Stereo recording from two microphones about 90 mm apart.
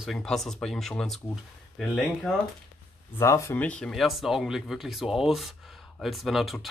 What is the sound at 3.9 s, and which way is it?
Speech, centre (ahead or behind).